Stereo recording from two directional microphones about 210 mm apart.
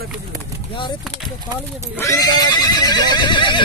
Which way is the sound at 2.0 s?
15° left (ahead or behind).